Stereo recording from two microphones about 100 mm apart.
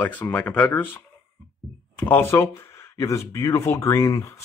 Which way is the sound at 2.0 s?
20° left (ahead or behind).